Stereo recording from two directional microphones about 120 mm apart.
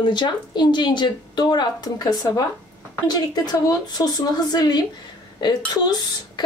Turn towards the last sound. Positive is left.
turn(degrees=35)  # may be behind; listen again after turning